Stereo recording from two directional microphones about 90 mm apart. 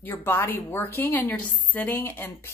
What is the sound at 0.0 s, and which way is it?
A woman's voice, 25° left (ahead or behind).